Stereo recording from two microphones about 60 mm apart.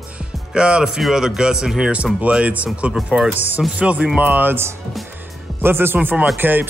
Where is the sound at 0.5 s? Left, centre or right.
Centre.